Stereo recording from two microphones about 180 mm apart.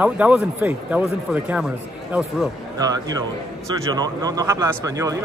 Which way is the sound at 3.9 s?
20° right (ahead or behind).